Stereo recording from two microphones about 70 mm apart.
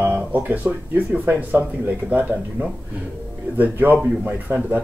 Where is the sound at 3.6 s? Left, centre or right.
Right.